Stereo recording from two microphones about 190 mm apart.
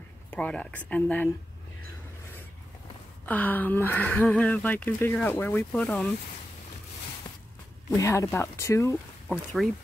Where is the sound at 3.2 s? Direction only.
10° left (ahead or behind).